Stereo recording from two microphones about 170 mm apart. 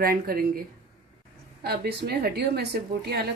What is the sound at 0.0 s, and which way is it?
Speech, 60° right (ahead or behind).